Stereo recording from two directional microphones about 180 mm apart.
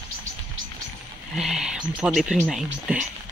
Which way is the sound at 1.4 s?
5° right (ahead or behind).